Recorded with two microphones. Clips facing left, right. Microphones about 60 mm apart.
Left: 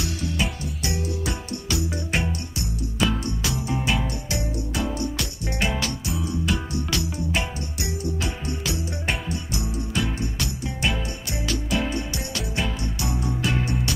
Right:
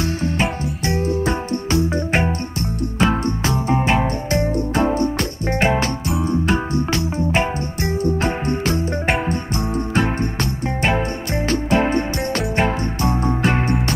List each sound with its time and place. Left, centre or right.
0.0 s music: right